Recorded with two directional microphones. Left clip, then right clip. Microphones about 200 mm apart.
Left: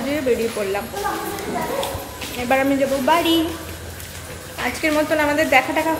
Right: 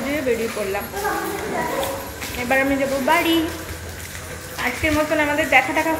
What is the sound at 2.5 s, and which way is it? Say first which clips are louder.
Speech: left 1 dB; 25° left (ahead or behind).